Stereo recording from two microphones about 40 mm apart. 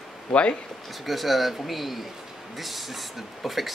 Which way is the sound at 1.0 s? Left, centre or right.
Centre.